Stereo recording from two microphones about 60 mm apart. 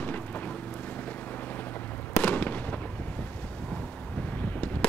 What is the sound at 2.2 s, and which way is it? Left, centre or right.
Fireworks, left.